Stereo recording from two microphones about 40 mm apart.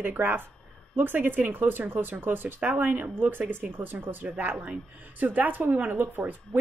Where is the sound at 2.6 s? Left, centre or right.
Right.